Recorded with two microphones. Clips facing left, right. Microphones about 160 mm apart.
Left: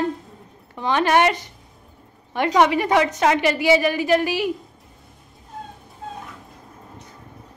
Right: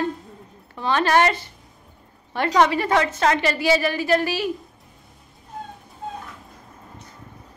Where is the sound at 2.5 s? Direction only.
15° left (ahead or behind).